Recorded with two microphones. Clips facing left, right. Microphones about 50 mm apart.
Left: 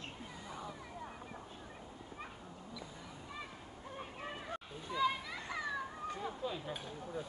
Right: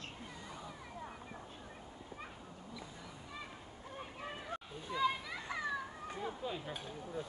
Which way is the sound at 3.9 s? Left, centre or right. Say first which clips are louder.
Even; centre.